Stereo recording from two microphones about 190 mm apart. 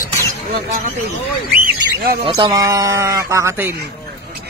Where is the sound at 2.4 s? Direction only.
20° right (ahead or behind).